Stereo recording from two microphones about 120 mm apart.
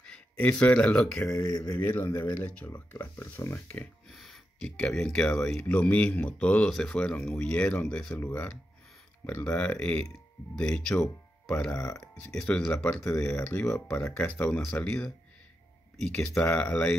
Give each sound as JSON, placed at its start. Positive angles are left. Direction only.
{"t": 0.0, "sound": "speech", "side_deg": 10}
{"t": 1.4, "sound": "speech", "side_deg": 35}
{"t": 1.7, "sound": "speech", "side_deg": 15}
{"t": 4.1, "sound": "speech", "side_deg": 0}
{"t": 9.2, "sound": "speech", "side_deg": 10}
{"t": 11.7, "sound": "speech", "side_deg": 25}
{"t": 12.3, "sound": "speech", "side_deg": 5}